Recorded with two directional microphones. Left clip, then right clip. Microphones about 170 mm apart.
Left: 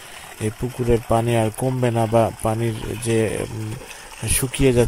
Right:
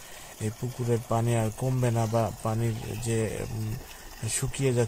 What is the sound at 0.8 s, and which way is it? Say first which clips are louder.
Speech: left 9 dB; 40° left (ahead or behind).